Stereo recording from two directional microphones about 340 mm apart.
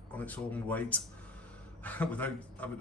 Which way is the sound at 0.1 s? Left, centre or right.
Centre.